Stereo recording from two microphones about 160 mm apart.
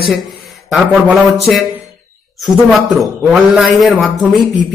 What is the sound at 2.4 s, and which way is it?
A man's voice, centre (ahead or behind).